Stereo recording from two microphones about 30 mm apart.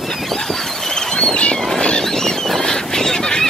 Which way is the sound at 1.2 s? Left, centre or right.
Left.